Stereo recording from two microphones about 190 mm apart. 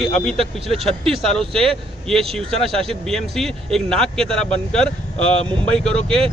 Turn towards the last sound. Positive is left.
turn(degrees=5)  # may be behind; listen again after turning